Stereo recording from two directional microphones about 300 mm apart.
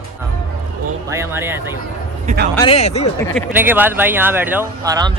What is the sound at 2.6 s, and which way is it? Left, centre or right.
Speech, centre.